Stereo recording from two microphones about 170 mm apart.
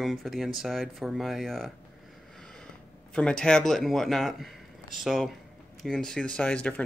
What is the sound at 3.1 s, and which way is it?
Speech, 5° left (ahead or behind).